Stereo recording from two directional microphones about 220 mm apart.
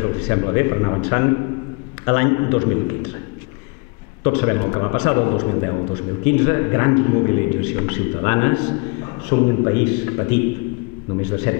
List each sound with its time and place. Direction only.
0.0 s a man's voice: 20° left (ahead or behind)
4.2 s a man's voice: 15° left (ahead or behind)
11.5 s speech: 15° left (ahead or behind)